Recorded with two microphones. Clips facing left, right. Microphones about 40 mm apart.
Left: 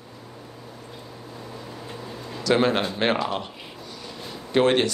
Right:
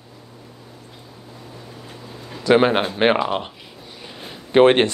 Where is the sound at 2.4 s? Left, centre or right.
Right.